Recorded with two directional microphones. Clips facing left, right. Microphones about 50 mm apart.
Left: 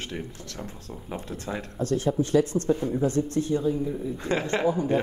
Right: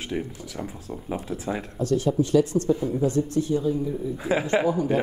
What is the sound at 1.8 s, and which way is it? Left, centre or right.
Speech, left.